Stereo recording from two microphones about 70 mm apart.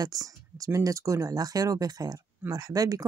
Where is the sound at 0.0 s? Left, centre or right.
Right.